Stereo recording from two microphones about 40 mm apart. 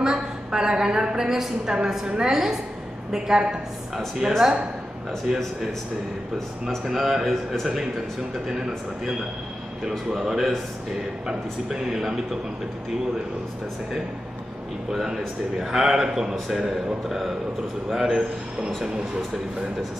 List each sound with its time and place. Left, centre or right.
0.0 s a woman's voice: centre
2.3 s a man's voice: centre
6.8 s a man's voice: centre
8.5 s a man's voice: centre
14.9 s a man's voice: centre